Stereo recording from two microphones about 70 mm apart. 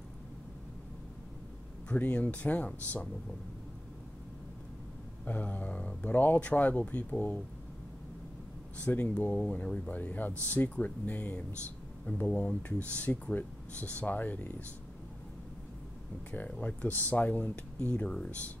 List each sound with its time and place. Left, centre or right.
1.9 s speech: left
5.2 s speech: left
8.7 s speech: left
16.3 s speech: left